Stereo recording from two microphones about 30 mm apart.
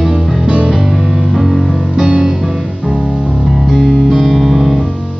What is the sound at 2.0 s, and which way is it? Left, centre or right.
Music, right.